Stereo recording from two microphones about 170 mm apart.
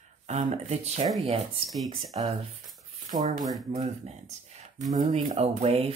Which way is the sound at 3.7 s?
45° right (ahead or behind).